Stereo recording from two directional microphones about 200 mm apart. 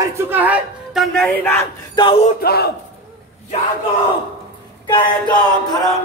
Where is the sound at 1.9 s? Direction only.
25° left (ahead or behind).